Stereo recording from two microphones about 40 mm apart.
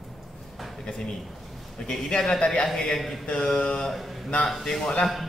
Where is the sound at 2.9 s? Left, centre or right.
Centre.